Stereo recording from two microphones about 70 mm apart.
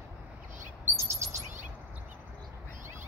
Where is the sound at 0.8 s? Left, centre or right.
Right.